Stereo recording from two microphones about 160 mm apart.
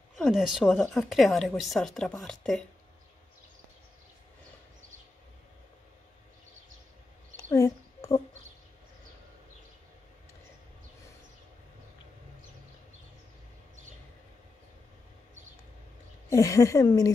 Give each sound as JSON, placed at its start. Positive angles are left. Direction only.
{"t": 0.2, "sound": "a woman's voice", "side_deg": 0}
{"t": 7.3, "sound": "a sound", "side_deg": 20}
{"t": 16.3, "sound": "a woman's voice", "side_deg": 20}